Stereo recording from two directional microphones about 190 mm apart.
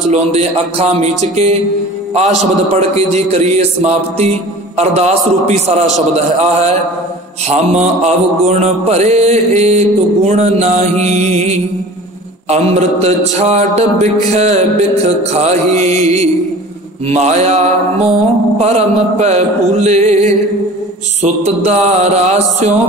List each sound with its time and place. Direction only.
0.1 s mantra: 35° right (ahead or behind)
2.7 s mantra: 35° right (ahead or behind)
7.4 s mantra: 35° right (ahead or behind)